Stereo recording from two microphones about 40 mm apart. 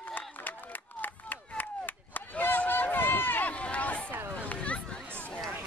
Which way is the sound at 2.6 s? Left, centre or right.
Left.